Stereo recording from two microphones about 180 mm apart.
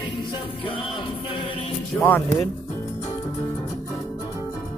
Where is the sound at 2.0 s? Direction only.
10° left (ahead or behind).